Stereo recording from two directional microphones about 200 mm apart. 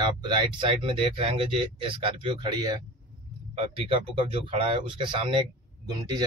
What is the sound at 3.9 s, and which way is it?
Speech, 25° right (ahead or behind).